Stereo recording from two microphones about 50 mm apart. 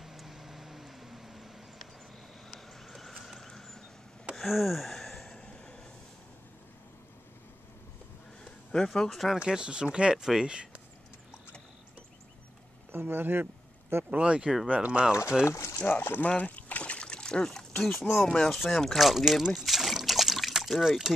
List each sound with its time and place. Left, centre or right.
0.0 s vehicle: centre
2.9 s a sound: centre
4.4 s gasp: centre
5.3 s a sound: centre
8.7 s speech: centre
9.4 s speech: centre
12.9 s a sound: right
14.1 s speech: right
15.4 s speech: left
15.9 s speech: left
16.3 s a sound: left
17.9 s speech: centre
18.9 s speech: centre
19.5 s trickle: centre